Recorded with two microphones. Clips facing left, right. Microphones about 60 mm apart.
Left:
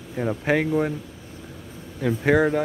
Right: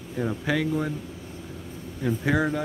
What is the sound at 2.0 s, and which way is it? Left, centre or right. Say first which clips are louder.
Speech: left 5 dB; left.